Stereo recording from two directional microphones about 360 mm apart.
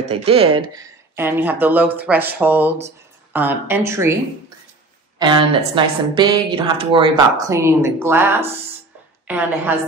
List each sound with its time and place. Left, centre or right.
0.0 s a woman's voice: centre
5.2 s a woman's voice: centre